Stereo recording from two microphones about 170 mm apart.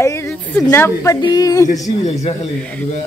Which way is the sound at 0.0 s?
15° left (ahead or behind).